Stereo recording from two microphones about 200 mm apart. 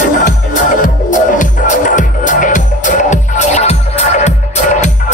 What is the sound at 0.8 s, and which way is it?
Music, 40° left (ahead or behind).